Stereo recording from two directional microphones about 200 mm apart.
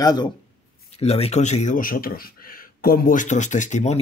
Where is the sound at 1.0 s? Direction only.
30° left (ahead or behind).